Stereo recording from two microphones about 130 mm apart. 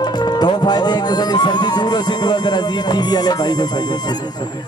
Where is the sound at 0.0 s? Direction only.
30° left (ahead or behind).